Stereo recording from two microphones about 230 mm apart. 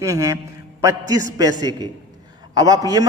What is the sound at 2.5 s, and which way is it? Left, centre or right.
Speech, centre.